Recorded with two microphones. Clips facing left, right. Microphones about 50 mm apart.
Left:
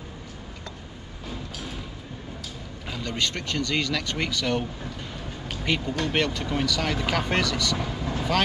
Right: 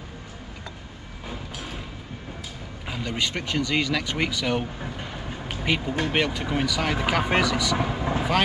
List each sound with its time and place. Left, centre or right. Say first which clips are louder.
2.9 s speech: right 1 dB; centre
4.8 s speech: right 2 dB; right
7.8 s vehicle: right 4 dB; right